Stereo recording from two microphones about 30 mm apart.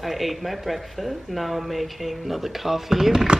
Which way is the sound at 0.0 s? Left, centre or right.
Centre.